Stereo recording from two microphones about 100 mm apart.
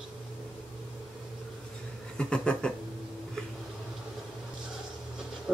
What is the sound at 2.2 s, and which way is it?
Speech, 10° left (ahead or behind).